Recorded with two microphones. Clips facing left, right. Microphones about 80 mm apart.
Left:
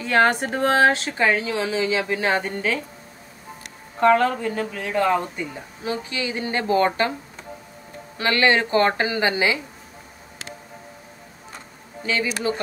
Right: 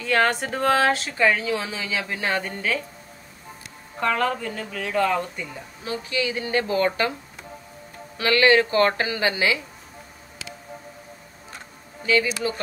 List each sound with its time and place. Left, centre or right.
0.0 s speech: left
4.0 s a woman's voice: left
8.2 s speech: left